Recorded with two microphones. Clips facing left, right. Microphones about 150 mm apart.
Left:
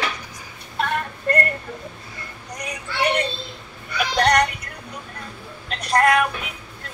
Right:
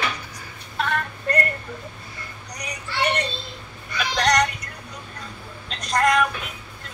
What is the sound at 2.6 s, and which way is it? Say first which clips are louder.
Child singing: left 1 dB; 55° left (ahead or behind).